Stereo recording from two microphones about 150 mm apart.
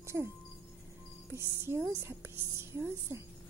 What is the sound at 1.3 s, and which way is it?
Speech, 15° right (ahead or behind).